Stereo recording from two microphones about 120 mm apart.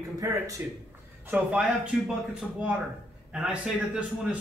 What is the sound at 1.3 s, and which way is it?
Speech, 10° right (ahead or behind).